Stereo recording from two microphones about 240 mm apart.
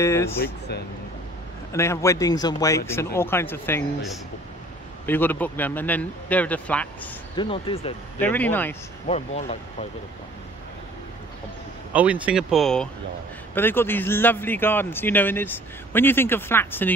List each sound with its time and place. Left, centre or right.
0.0 s a man's voice: centre
1.7 s a man's voice: centre
5.0 s a man's voice: centre
7.3 s speech: left
8.2 s a man's voice: centre
9.0 s speech: left
11.9 s a man's voice: centre